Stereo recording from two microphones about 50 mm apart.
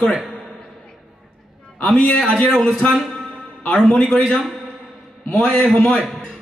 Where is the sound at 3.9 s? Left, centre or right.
Centre.